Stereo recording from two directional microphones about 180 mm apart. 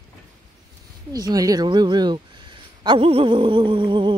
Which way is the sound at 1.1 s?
20° right (ahead or behind).